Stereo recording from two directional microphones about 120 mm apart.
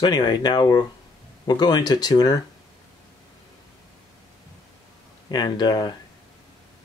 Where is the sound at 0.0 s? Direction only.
35° left (ahead or behind).